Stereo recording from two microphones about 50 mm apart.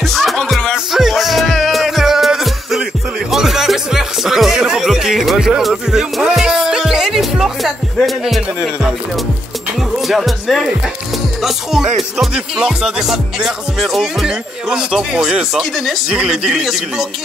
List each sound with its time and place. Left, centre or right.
0.0 s music: centre
5.6 s speech: centre
6.4 s music: centre
9.9 s speech: centre
12.5 s music: centre
14.2 s music: centre
15.5 s speech: centre
16.3 s music: centre